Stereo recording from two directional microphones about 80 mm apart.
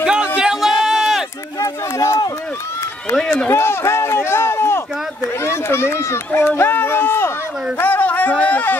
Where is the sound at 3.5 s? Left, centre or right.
Left.